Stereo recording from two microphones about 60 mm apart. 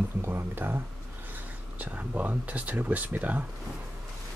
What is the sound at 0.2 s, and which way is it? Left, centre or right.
Speech, right.